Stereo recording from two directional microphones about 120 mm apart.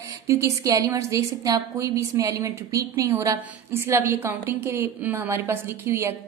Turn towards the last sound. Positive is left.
turn(degrees=-20)  # may be behind; listen again after turning